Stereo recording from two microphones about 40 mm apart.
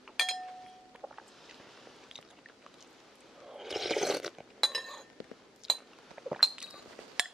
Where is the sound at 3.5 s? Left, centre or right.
Centre.